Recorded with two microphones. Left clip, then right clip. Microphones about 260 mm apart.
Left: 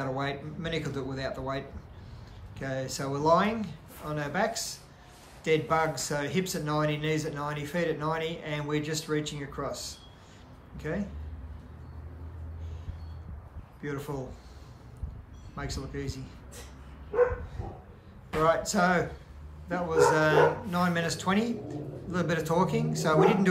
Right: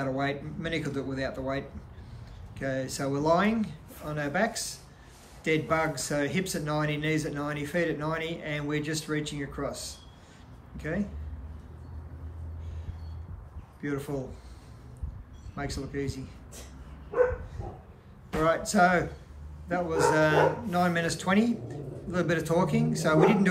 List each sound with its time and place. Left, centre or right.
0.0 s speech: centre
2.6 s speech: centre
13.7 s speech: centre
15.5 s speech: centre
18.4 s speech: centre